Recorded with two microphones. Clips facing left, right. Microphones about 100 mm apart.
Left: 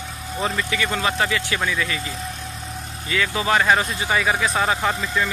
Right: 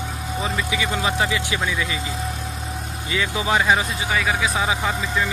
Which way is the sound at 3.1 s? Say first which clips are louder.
Left 1 dB; 20° right (ahead or behind).